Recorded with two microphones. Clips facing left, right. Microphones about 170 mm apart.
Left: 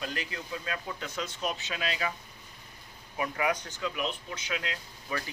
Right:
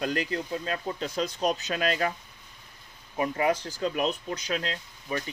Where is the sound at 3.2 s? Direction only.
30° right (ahead or behind).